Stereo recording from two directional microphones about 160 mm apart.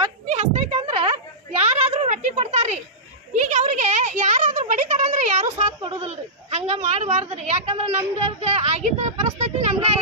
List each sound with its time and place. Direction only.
0.3 s a sound: 45° right (ahead or behind)
3.3 s speech: 45° right (ahead or behind)
5.8 s a woman's voice: 35° right (ahead or behind)